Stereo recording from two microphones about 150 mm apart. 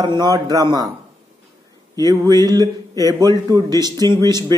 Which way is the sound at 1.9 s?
25° right (ahead or behind).